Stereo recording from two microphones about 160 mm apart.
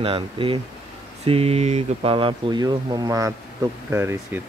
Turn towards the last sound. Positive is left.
turn(degrees=-15)  # may be behind; listen again after turning